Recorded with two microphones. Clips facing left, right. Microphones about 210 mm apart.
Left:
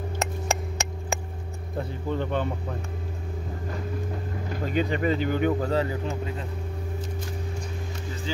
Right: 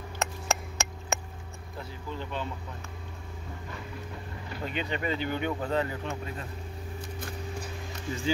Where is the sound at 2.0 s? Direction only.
55° left (ahead or behind).